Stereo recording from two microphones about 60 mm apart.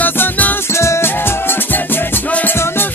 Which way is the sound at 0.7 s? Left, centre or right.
Left.